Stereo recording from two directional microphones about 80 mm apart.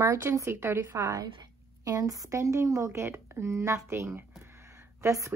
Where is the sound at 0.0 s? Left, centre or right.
Right.